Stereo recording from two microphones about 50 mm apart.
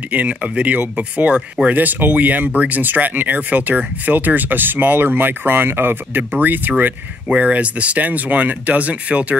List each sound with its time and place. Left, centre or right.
0.1 s speech: right
7.2 s speech: right